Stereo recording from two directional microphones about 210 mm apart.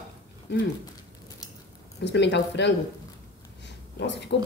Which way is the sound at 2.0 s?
55° left (ahead or behind).